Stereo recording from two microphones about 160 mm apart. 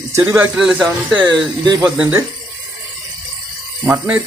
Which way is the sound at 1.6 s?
25° right (ahead or behind).